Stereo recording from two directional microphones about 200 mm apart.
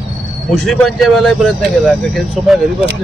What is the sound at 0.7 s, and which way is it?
Speech, centre (ahead or behind).